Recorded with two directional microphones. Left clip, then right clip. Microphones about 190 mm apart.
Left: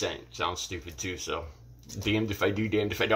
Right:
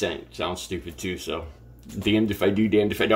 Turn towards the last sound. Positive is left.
turn(degrees=-10)  # may be behind; listen again after turning